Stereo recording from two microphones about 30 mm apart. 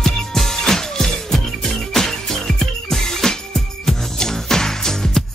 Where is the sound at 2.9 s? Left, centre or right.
Centre.